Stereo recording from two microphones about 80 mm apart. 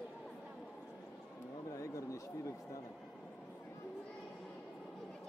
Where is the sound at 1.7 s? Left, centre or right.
Left.